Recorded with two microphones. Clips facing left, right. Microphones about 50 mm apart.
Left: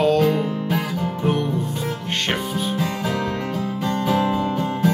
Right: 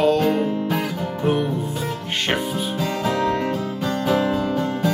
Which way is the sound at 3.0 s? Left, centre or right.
Centre.